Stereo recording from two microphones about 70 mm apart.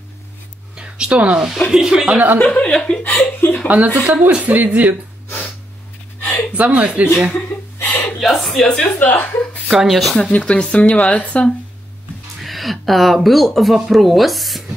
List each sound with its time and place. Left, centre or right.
0.7 s speech: centre
1.5 s speech: centre
2.4 s speech: centre
3.0 s speech: left
3.6 s speech: right
6.5 s speech: centre
7.3 s a sound: left
8.2 s speech: centre
8.6 s speech: centre
9.0 s speech: left
9.7 s speech: centre
10.3 s speech: centre
12.4 s speech: centre